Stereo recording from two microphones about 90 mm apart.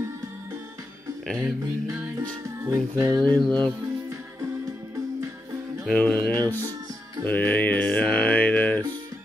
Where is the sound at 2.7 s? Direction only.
40° right (ahead or behind).